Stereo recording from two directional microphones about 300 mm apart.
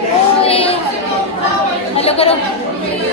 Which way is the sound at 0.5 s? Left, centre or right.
Centre.